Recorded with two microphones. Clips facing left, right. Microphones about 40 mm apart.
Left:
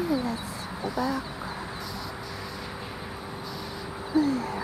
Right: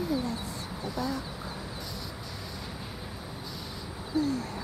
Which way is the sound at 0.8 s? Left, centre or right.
Centre.